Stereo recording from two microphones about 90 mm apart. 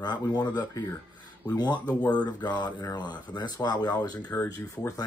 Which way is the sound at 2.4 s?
50° left (ahead or behind).